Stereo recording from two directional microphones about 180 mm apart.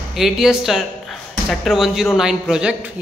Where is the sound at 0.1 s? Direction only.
Centre (ahead or behind).